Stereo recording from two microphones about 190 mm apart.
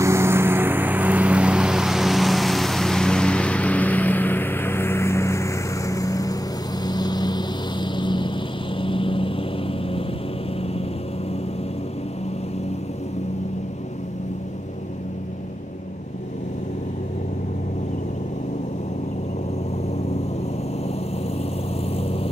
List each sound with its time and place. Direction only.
0.0 s vehicle: 15° right (ahead or behind); by 10.0 s 30° left (ahead or behind)